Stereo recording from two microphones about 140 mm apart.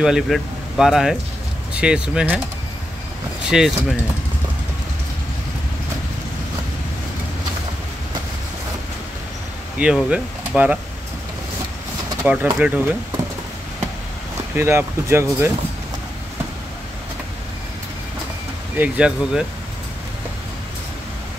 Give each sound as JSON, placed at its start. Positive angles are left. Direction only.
{"t": 0.0, "sound": "speech", "side_deg": -5}
{"t": 3.4, "sound": "speech", "side_deg": -5}
{"t": 9.8, "sound": "speech", "side_deg": -5}
{"t": 12.2, "sound": "speech", "side_deg": -10}
{"t": 14.6, "sound": "speech", "side_deg": -20}
{"t": 18.8, "sound": "speech", "side_deg": -5}